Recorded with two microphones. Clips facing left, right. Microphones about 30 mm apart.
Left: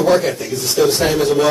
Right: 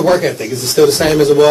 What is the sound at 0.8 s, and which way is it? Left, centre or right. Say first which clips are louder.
Speech: right 4 dB; right.